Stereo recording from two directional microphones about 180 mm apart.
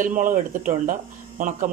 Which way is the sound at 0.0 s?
50° right (ahead or behind).